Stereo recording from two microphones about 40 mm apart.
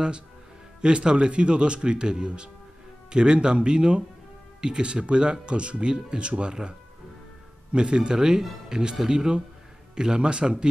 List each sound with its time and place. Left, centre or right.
0.7 s speech: right
7.7 s speech: right